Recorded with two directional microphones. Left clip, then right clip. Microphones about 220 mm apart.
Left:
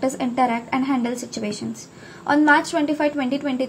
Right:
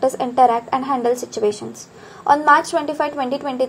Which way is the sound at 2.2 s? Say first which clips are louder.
Right 3 dB; 30° right (ahead or behind).